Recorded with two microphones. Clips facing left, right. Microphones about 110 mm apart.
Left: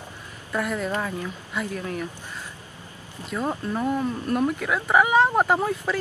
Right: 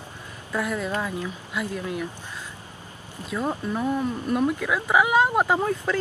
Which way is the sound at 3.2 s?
Centre (ahead or behind).